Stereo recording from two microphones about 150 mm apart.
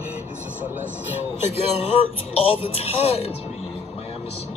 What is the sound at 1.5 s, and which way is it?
Speech, 40° left (ahead or behind).